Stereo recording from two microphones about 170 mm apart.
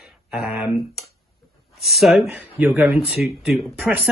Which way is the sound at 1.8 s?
Centre (ahead or behind).